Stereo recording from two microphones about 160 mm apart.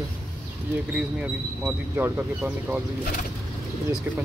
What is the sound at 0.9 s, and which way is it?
Speech, 5° right (ahead or behind).